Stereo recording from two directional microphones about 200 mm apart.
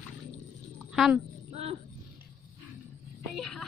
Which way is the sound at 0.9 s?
Centre (ahead or behind).